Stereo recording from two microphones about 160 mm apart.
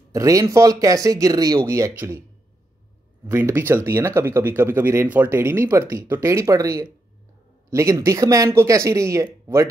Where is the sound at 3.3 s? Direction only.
15° right (ahead or behind).